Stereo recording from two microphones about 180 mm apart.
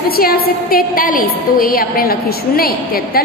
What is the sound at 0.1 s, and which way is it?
A woman's voice, 55° left (ahead or behind).